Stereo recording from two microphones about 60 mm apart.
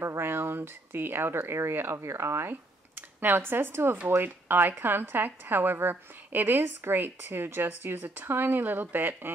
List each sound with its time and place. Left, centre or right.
0.0 s a sound: right
1.5 s speech: right
3.2 s a woman's voice: right